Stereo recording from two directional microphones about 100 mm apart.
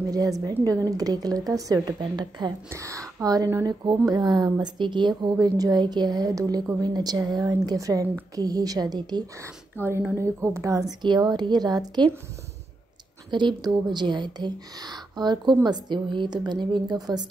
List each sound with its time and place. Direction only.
0.1 s a woman's voice: 40° right (ahead or behind)
2.7 s a woman's voice: 30° right (ahead or behind)
9.8 s speech: 20° left (ahead or behind)
10.1 s a woman's voice: 30° right (ahead or behind)
11.0 s speech: 45° right (ahead or behind)
13.3 s speech: 50° right (ahead or behind)